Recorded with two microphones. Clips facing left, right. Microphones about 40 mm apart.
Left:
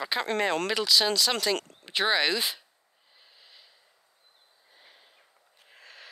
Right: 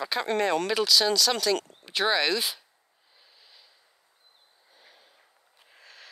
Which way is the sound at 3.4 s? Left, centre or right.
Centre.